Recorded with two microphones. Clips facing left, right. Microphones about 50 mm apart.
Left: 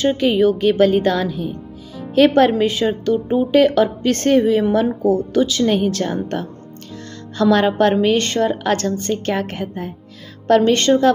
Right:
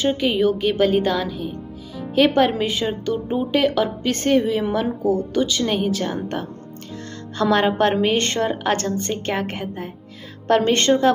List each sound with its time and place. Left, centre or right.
0.0 s speech: centre
7.3 s a woman's voice: right